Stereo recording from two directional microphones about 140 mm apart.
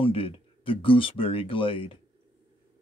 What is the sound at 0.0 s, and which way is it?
Speech, 40° left (ahead or behind).